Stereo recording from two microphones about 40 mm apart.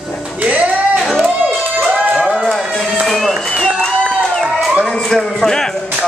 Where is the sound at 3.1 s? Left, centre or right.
Centre.